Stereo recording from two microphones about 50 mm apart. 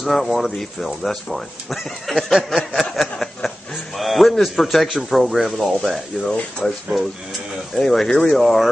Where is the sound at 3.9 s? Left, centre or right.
Centre.